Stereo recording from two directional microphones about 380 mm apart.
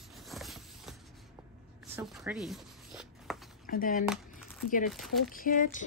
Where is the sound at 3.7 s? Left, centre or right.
Left.